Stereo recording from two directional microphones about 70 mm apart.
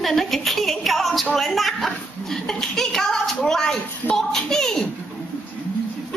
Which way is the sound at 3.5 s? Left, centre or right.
Centre.